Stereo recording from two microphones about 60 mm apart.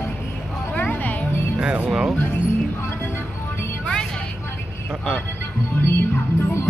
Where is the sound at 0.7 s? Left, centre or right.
Left.